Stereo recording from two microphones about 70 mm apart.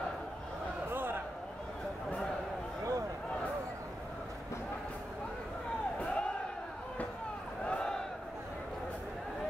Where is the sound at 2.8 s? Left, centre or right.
Right.